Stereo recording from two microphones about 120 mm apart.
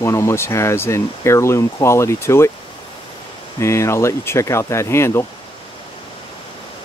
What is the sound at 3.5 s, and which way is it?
Speech, 25° left (ahead or behind).